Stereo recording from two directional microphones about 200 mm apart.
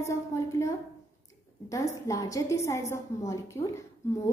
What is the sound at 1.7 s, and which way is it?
A woman's voice, 15° left (ahead or behind).